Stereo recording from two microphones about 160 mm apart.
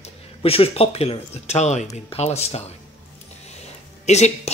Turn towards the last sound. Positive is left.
turn(degrees=45)  # may be behind; listen again after turning